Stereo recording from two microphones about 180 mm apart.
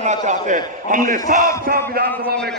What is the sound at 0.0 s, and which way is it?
A man's voice, 40° right (ahead or behind).